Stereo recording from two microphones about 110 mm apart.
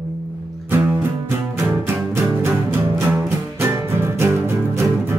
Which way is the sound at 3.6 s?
20° right (ahead or behind).